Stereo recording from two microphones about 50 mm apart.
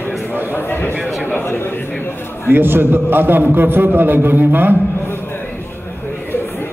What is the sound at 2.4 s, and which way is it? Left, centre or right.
A man's voice, right.